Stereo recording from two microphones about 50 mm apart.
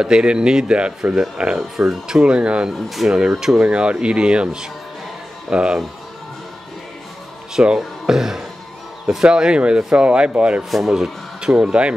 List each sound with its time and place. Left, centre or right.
0.0 s speech: centre
3.5 s speech: right
7.5 s speech: centre
10.6 s speech: centre; by 11.9 s right